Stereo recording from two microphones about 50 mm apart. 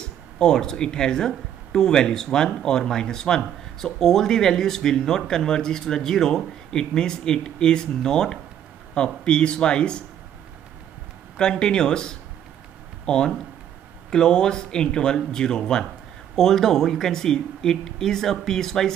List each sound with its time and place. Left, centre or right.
0.0 s speech: centre
11.3 s speech: centre